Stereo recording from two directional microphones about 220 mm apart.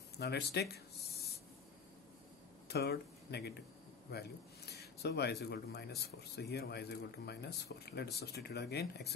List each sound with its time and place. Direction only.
0.2 s speech: 50° left (ahead or behind)
2.7 s speech: 50° left (ahead or behind)